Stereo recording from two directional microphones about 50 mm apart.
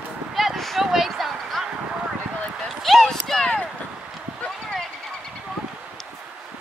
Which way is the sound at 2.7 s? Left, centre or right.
Centre.